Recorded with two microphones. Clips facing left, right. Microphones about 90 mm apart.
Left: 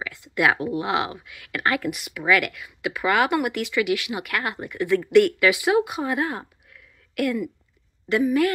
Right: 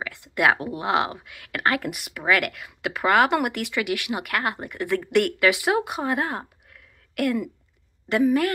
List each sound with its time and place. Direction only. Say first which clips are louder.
0.1 s a sound: left 1 dB; 55° right (ahead or behind)
0.5 s speech: right 1 dB; 35° right (ahead or behind)
3.3 s speech: left 2 dB; 55° right (ahead or behind)